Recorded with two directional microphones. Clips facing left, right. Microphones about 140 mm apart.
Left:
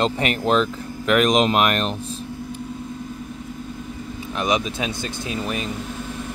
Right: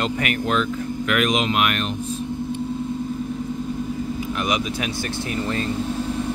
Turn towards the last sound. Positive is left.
turn(degrees=15)  # may be behind; listen again after turning